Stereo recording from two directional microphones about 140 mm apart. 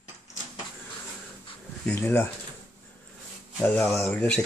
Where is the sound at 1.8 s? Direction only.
15° left (ahead or behind).